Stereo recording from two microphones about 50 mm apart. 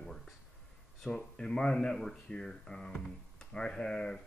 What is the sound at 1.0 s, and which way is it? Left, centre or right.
Speech, centre.